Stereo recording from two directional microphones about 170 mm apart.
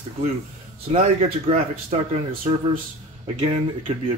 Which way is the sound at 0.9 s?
40° right (ahead or behind).